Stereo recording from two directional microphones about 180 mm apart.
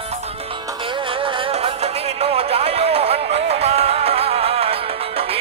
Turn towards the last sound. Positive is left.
turn(degrees=-30)  # may be behind; listen again after turning